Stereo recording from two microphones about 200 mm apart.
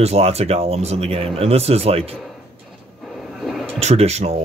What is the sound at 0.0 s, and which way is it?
Speech, 30° right (ahead or behind).